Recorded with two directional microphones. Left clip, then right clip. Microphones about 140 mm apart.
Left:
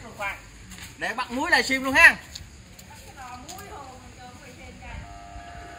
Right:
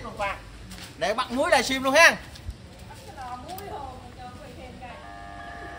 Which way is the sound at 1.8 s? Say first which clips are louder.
Left 1 dB; 70° right (ahead or behind).